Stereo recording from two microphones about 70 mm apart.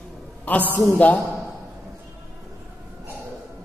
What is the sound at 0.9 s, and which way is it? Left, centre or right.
Speech, left.